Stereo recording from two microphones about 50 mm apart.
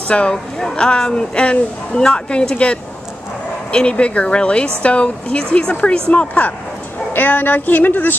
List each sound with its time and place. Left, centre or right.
0.1 s speech: left